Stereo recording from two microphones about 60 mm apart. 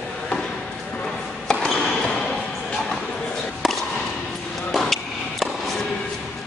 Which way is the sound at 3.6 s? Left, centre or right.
Centre.